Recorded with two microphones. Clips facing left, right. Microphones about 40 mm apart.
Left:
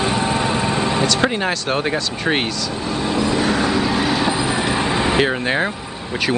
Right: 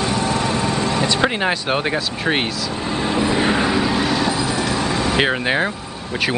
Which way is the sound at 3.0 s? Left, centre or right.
Right.